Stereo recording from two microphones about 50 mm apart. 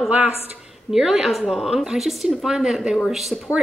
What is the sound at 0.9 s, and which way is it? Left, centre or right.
A woman's voice, centre.